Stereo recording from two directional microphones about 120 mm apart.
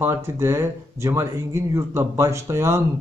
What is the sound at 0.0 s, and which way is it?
A man's voice, 20° right (ahead or behind).